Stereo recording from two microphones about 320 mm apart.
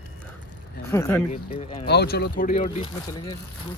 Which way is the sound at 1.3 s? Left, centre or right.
Centre.